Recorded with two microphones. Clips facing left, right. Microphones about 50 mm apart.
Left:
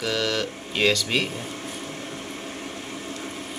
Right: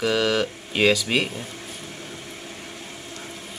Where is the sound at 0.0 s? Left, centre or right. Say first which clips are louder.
Right 4 dB; centre.